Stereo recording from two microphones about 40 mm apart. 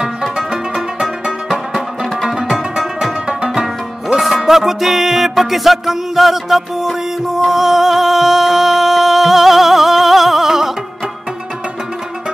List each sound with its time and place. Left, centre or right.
0.0 s music: centre